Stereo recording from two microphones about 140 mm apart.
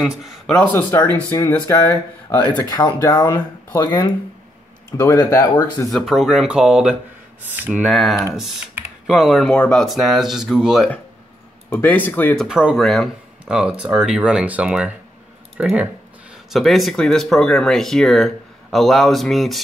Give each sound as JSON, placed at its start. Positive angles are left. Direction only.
{"t": 0.0, "sound": "speech", "side_deg": 0}
{"t": 2.6, "sound": "speech", "side_deg": 25}
{"t": 5.9, "sound": "speech", "side_deg": 0}
{"t": 7.9, "sound": "speech", "side_deg": 0}
{"t": 11.7, "sound": "speech", "side_deg": 15}
{"t": 12.4, "sound": "speech", "side_deg": -5}